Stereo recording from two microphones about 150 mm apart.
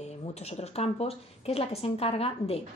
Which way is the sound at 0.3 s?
45° left (ahead or behind).